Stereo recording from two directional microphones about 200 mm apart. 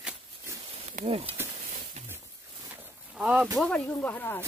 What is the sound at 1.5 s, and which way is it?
Stir, 30° right (ahead or behind).